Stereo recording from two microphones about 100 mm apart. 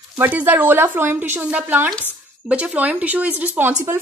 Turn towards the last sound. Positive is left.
turn(degrees=-15)  # may be behind; listen again after turning